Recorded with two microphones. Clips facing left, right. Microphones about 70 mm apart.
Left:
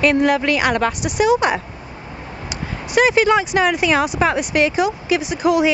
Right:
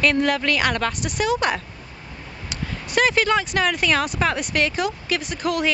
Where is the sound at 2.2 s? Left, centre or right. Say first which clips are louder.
Left 6 dB; left.